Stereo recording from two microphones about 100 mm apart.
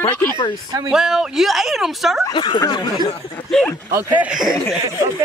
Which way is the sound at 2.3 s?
45° left (ahead or behind).